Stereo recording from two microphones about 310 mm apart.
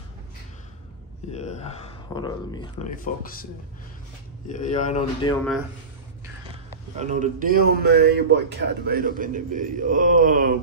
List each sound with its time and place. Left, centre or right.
1.3 s a sound: left
2.1 s speech: centre
4.5 s speech: left
7.0 s a man's voice: right